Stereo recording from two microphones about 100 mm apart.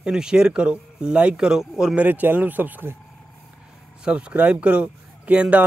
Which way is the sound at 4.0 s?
10° right (ahead or behind).